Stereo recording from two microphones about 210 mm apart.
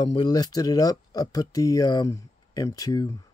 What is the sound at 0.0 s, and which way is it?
Speech, 20° left (ahead or behind).